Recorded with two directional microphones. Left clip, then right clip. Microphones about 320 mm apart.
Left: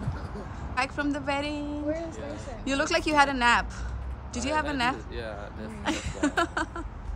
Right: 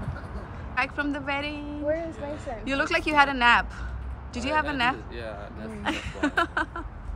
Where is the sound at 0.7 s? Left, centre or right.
Centre.